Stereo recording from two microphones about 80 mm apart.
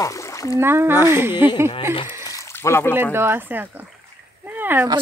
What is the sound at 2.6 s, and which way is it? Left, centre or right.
Speech, left.